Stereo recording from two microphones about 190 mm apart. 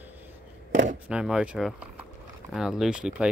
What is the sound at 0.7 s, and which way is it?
Speech, 40° right (ahead or behind).